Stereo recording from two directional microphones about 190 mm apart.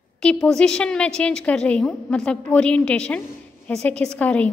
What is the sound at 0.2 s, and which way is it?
A woman's voice, 5° left (ahead or behind).